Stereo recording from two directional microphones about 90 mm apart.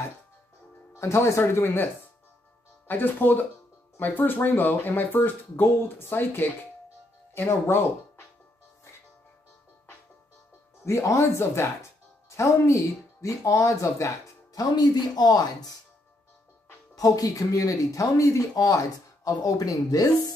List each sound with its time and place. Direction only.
0.9 s speech: 30° left (ahead or behind)
2.9 s speech: 20° left (ahead or behind)
10.9 s speech: 35° left (ahead or behind)
14.6 s speech: 50° left (ahead or behind)
16.9 s speech: 40° left (ahead or behind)